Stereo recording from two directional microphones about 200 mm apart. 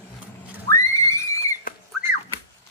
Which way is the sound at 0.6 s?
15° left (ahead or behind).